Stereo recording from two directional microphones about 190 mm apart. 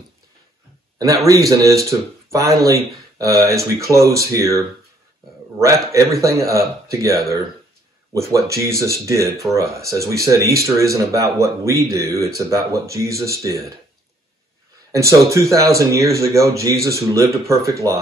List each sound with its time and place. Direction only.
0.9 s speech: 15° right (ahead or behind)
14.9 s speech: 15° right (ahead or behind)